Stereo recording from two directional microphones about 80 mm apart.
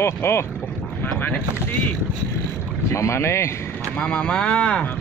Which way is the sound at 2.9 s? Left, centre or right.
Left.